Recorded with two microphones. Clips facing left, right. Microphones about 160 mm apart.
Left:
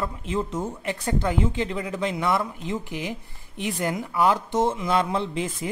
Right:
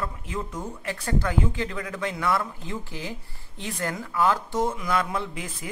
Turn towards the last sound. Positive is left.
turn(degrees=25)  # may be behind; listen again after turning